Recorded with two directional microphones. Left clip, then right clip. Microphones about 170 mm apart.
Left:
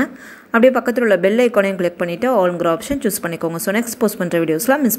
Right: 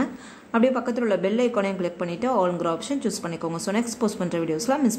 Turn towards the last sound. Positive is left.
turn(degrees=25)  # may be behind; listen again after turning